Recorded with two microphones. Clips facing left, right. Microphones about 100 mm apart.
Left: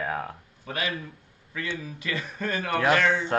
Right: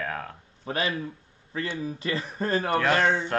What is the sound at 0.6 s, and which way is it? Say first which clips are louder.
Speech: right 3 dB; 30° right (ahead or behind).